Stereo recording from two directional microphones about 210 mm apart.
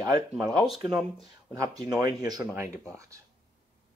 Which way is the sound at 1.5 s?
15° right (ahead or behind).